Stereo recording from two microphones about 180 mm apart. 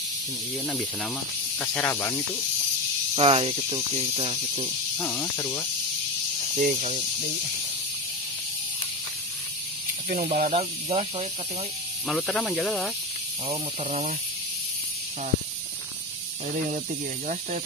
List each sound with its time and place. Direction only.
1.6 s speech: 10° left (ahead or behind)
3.2 s speech: 30° right (ahead or behind)
4.9 s speech: 10° left (ahead or behind)
6.5 s speech: 40° right (ahead or behind)
10.0 s speech: 45° right (ahead or behind)
12.1 s speech: 5° left (ahead or behind)
13.8 s speech: 40° right (ahead or behind)